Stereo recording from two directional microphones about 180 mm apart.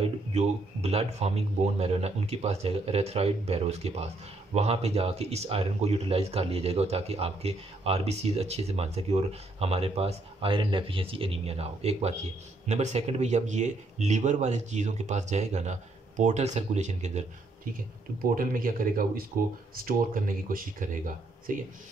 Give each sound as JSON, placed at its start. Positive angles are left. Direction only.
{"t": 0.3, "sound": "speech", "side_deg": -35}
{"t": 18.2, "sound": "speech", "side_deg": -50}